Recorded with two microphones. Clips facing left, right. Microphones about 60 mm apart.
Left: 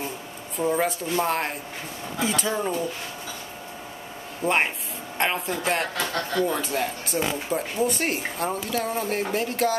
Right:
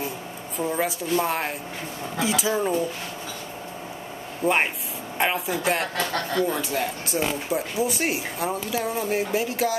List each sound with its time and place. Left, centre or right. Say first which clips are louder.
0.6 s speech: left 2 dB; centre
4.4 s speech: right 1 dB; centre
5.9 s speech: right 1 dB; right
6.5 s speech: even; centre